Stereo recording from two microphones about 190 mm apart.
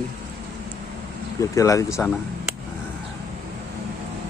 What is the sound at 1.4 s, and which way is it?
Speech, 15° left (ahead or behind).